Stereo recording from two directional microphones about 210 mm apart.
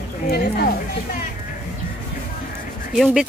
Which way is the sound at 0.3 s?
45° left (ahead or behind).